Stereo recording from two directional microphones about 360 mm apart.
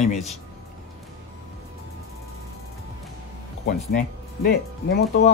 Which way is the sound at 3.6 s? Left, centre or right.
Left.